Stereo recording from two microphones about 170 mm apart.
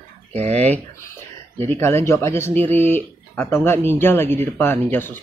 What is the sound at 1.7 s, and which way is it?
Speech, 15° left (ahead or behind).